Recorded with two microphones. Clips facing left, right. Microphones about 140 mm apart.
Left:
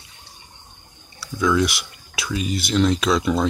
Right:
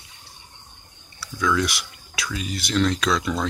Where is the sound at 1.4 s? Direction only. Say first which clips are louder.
Left 4 dB; 15° left (ahead or behind).